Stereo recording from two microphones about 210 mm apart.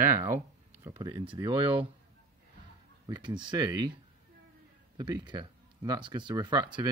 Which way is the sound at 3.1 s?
20° right (ahead or behind).